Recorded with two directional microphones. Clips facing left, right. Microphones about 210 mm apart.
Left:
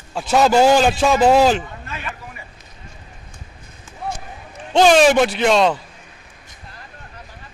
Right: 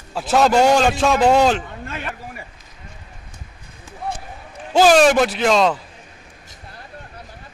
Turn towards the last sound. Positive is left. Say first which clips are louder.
# left 1 dB
turn(degrees=0)  # may be behind; listen again after turning